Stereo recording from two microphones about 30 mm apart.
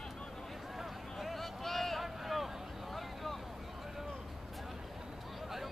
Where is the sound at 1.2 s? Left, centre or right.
Centre.